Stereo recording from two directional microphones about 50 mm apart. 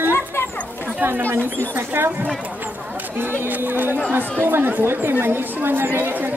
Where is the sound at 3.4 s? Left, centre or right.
Right.